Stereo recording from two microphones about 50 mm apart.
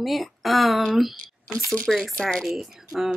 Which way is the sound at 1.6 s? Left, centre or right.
Right.